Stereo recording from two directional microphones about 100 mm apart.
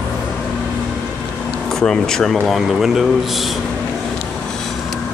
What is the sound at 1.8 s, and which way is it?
Speech, 5° left (ahead or behind).